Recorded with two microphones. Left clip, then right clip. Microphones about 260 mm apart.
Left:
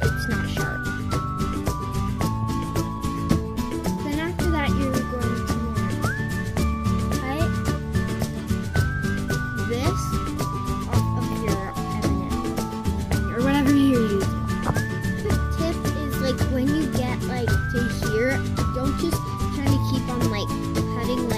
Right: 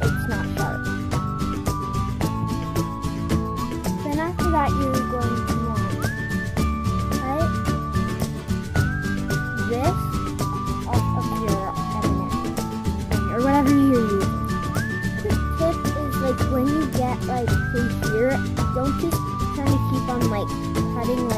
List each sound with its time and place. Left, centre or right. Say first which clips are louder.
4.1 s music: right 5 dB; centre
13.4 s music: right 2 dB; centre
16.3 s music: right 2 dB; centre
19.6 s music: right 1 dB; centre